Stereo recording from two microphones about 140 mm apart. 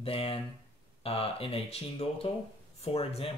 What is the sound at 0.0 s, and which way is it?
Speech, 40° left (ahead or behind).